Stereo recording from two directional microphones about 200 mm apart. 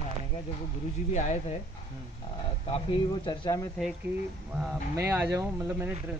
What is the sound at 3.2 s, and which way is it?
Speech, 20° left (ahead or behind).